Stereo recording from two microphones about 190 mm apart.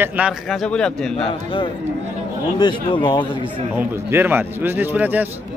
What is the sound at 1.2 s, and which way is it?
Speech, 25° left (ahead or behind).